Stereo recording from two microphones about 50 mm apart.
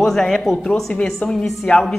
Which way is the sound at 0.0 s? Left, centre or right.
Centre.